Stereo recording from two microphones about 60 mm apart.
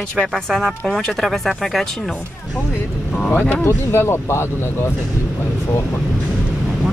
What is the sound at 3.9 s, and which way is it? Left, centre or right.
Speech, left.